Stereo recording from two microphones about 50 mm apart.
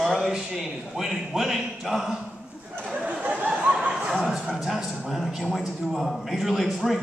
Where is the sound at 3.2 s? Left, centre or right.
Right.